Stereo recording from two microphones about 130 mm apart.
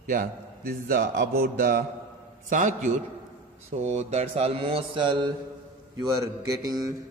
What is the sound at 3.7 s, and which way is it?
Mantra, 60° right (ahead or behind).